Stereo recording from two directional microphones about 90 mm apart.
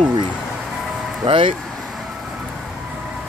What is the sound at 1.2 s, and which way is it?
Speech, 75° right (ahead or behind).